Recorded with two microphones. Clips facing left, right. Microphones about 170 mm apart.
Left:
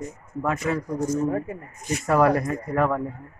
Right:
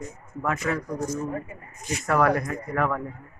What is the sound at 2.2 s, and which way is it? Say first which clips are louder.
Speech: left 3 dB; 30° left (ahead or behind).